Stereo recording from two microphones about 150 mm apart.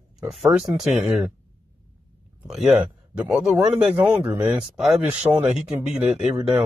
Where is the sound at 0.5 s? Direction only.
5° right (ahead or behind).